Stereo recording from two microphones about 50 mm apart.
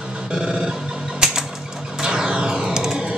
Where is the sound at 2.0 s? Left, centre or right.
Centre.